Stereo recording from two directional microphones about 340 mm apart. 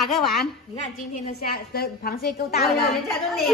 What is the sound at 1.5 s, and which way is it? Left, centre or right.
A woman's voice, left.